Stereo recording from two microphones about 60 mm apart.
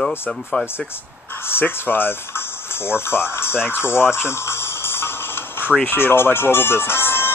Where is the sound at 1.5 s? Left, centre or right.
Left.